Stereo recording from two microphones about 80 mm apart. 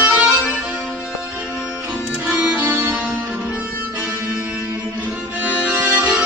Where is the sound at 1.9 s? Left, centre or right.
Centre.